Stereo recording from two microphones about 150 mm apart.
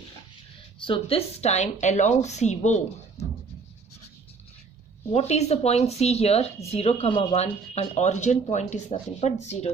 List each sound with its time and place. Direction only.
0.8 s a woman's voice: 40° left (ahead or behind)
5.1 s a woman's voice: 45° left (ahead or behind)